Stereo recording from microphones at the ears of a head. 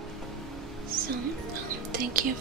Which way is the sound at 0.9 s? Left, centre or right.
Right.